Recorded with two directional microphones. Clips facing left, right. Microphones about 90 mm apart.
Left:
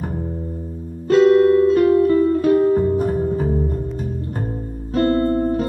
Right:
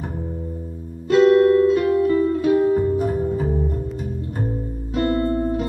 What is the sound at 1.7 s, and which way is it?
Music, 35° left (ahead or behind).